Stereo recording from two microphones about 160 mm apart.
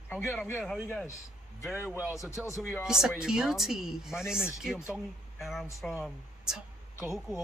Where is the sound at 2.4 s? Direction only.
20° left (ahead or behind).